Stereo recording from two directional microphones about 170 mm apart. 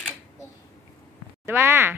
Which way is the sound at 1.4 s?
15° right (ahead or behind).